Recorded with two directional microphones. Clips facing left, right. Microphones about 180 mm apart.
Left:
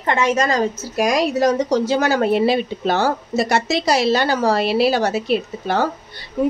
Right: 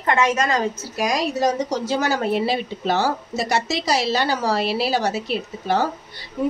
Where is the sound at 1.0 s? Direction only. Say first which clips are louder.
Left 5 dB; 55° left (ahead or behind).